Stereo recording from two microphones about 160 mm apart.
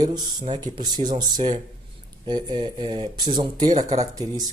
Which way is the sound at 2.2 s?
30° right (ahead or behind).